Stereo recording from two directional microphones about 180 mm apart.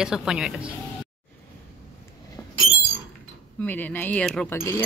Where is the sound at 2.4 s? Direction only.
20° left (ahead or behind).